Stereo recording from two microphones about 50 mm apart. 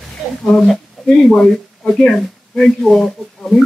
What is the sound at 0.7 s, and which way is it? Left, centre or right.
Speech, centre.